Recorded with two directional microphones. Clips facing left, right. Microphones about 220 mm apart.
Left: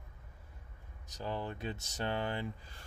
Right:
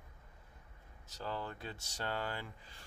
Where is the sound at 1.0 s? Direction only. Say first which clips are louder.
Left 3 dB; 15° left (ahead or behind).